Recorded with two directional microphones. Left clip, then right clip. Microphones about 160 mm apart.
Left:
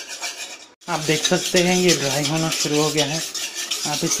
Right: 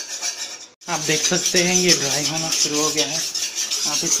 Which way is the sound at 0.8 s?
15° left (ahead or behind).